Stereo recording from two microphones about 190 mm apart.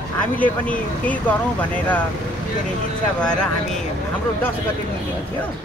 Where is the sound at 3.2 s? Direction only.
5° left (ahead or behind).